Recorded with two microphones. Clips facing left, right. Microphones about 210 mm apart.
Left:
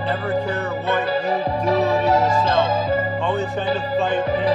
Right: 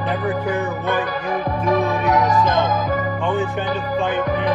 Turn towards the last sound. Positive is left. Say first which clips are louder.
# left 1 dB
turn(degrees=25)  # may be behind; listen again after turning